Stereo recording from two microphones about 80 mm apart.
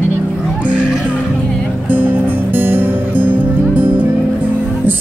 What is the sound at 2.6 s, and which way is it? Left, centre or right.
Music, right.